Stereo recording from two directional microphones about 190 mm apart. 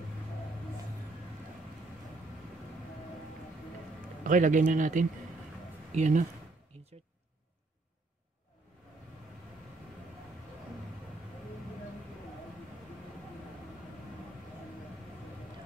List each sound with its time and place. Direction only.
4.2 s speech: 45° right (ahead or behind)